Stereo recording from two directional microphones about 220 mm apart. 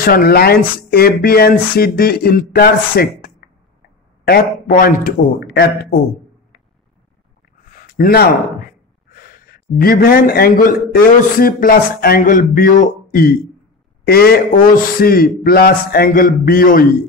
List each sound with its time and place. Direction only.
0.0 s speech: 40° left (ahead or behind)
5.5 s speech: 50° left (ahead or behind)
7.9 s speech: 40° left (ahead or behind)
9.8 s speech: 40° left (ahead or behind)